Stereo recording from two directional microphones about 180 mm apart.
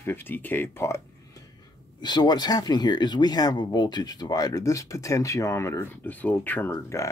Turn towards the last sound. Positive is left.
turn(degrees=15)  # may be behind; listen again after turning